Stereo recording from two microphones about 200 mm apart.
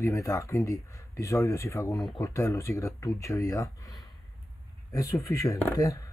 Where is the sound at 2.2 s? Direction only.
15° left (ahead or behind).